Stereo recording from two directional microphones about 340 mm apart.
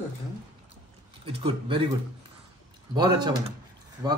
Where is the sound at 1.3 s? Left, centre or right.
Centre.